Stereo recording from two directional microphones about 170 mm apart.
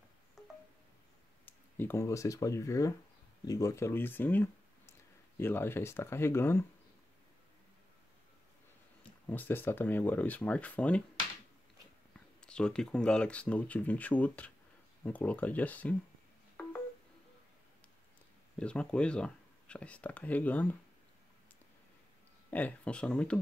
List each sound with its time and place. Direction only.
1.4 s speech: 15° left (ahead or behind)
9.3 s speech: 10° left (ahead or behind)
12.4 s speech: 5° left (ahead or behind)
18.6 s speech: 5° left (ahead or behind)
22.5 s speech: 10° left (ahead or behind)